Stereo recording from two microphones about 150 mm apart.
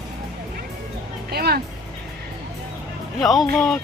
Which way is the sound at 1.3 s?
90° right.